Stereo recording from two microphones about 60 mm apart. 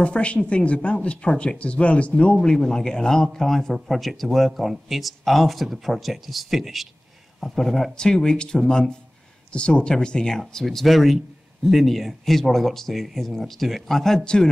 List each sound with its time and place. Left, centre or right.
0.0 s speech: left
2.3 s speech: centre